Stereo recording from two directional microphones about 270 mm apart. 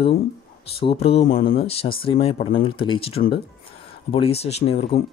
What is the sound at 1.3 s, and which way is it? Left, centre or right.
Speech, left.